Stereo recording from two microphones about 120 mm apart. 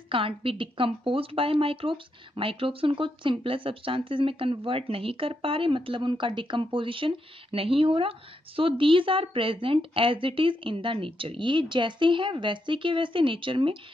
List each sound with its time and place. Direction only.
0.1 s a woman's voice: 50° right (ahead or behind)